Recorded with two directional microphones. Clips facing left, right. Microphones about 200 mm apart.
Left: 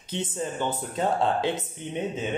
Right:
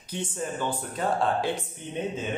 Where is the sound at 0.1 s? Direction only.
20° left (ahead or behind).